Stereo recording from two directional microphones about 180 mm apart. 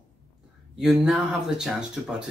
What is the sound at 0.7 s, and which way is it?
Speech, centre (ahead or behind).